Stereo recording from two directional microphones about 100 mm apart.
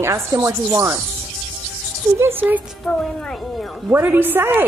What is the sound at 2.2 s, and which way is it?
Speech, 20° right (ahead or behind).